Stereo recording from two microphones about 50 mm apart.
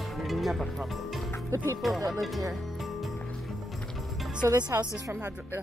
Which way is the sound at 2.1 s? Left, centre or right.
Centre.